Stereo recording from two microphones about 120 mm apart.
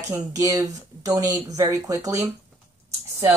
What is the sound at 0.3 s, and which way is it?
Speech, 25° right (ahead or behind).